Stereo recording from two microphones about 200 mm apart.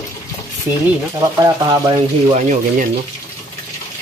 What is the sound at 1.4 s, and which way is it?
Speech, 20° right (ahead or behind).